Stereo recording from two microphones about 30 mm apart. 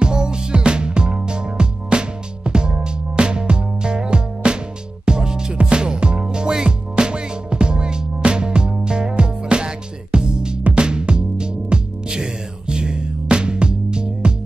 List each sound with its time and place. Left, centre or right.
0.0 s music: right